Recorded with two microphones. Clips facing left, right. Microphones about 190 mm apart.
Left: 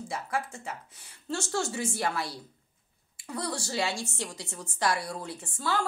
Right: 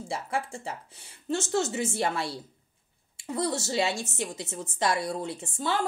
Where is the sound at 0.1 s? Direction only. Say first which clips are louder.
Right 2 dB; 30° right (ahead or behind).